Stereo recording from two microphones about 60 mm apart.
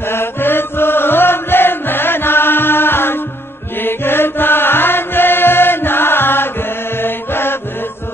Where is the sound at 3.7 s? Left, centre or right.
Left.